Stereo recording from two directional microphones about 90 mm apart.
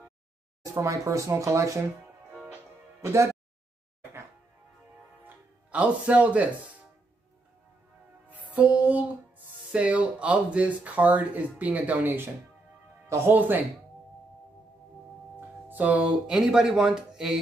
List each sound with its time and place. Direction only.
0.7 s speech: 35° right (ahead or behind)
2.4 s music: 25° right (ahead or behind)
5.2 s music: 15° right (ahead or behind)
8.5 s music: 15° right (ahead or behind)
9.7 s speech: 15° right (ahead or behind)
13.3 s speech: 20° right (ahead or behind)
15.7 s speech: 15° right (ahead or behind)